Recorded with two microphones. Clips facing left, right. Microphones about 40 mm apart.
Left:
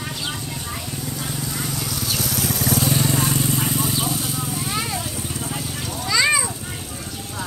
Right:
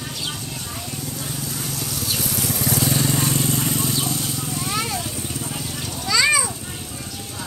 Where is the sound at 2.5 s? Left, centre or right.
Left.